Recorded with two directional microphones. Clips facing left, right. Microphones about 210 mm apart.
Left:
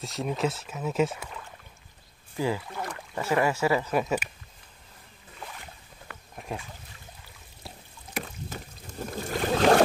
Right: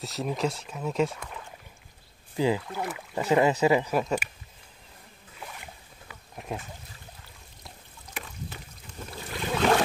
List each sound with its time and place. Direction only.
0.0 s speech: centre (ahead or behind)
2.3 s speech: 15° right (ahead or behind)
2.7 s speech: 5° right (ahead or behind)
3.2 s speech: 20° right (ahead or behind)
3.9 s speech: centre (ahead or behind)
6.0 s a sound: centre (ahead or behind)
8.1 s boat: 40° left (ahead or behind)